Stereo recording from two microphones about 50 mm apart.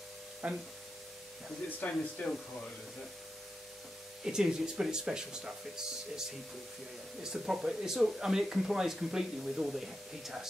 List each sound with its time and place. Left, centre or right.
0.4 s speech: right
1.8 s speech: left
4.2 s speech: centre
7.2 s speech: centre